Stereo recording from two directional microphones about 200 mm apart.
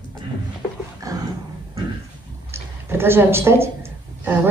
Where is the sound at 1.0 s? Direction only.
15° right (ahead or behind).